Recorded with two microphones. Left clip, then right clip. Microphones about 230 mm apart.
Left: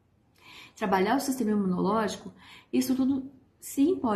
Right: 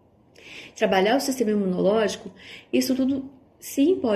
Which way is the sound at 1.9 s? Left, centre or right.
Left.